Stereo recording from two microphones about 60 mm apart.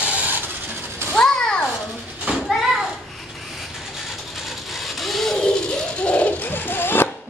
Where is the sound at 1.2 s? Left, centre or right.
Centre.